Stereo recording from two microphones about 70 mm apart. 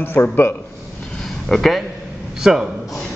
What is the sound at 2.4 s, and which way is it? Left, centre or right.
Speech, centre.